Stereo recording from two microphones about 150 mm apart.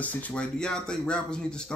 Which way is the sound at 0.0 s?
10° left (ahead or behind).